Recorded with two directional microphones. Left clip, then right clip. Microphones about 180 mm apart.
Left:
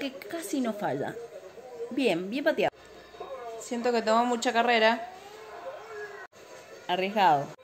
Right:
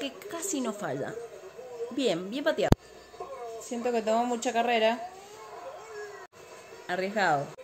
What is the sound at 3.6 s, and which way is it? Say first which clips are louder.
Speech: left 2 dB; 20° right (ahead or behind).